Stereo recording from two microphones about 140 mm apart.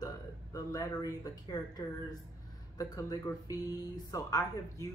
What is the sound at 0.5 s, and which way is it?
Speech, 25° left (ahead or behind).